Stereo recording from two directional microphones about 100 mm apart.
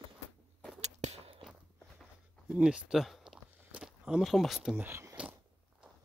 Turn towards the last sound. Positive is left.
turn(degrees=-15)  # may be behind; listen again after turning